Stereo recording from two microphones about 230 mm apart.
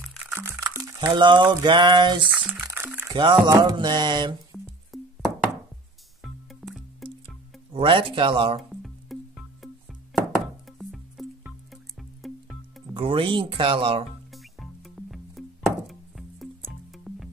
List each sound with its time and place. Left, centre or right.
0.0 s music: centre
0.4 s music: centre
2.3 s speech: centre
2.6 s music: centre
3.2 s speech: centre
4.9 s music: centre
6.2 s music: centre
7.7 s speech: right
8.8 s music: centre
12.9 s speech: right
14.3 s music: centre